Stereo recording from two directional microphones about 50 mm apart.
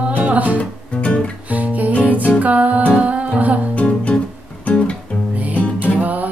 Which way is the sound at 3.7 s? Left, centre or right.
Left.